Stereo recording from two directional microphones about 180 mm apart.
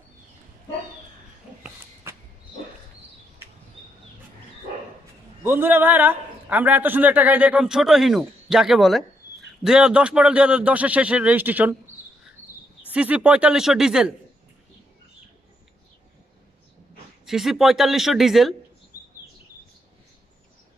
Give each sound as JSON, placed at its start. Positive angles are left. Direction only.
{"t": 5.4, "sound": "a man's voice", "side_deg": -10}
{"t": 12.9, "sound": "speech", "side_deg": -5}
{"t": 17.3, "sound": "speech", "side_deg": 0}
{"t": 18.9, "sound": "chirp", "side_deg": -45}